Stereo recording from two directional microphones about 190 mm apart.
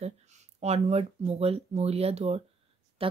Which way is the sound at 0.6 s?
35° right (ahead or behind).